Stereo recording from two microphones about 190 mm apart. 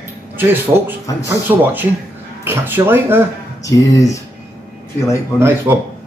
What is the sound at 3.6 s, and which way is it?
Speech, 20° left (ahead or behind).